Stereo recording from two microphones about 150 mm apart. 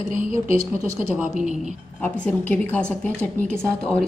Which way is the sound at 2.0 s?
10° left (ahead or behind).